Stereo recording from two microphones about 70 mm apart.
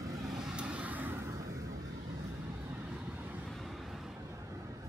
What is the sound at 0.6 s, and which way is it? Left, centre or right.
Vehicle, centre.